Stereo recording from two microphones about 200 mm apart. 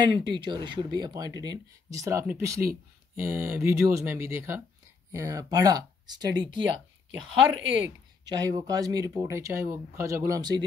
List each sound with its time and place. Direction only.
0.0 s speech: 20° right (ahead or behind)
8.3 s speech: 20° right (ahead or behind)